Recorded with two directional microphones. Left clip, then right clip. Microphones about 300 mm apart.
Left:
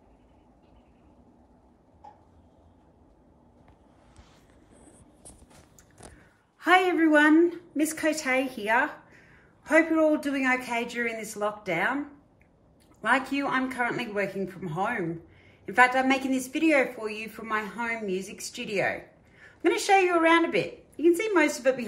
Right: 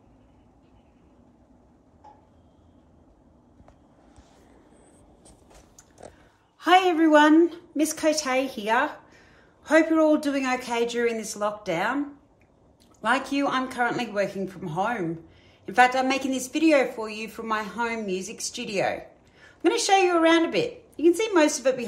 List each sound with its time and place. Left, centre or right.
6.6 s a man's voice: centre
13.0 s a man's voice: centre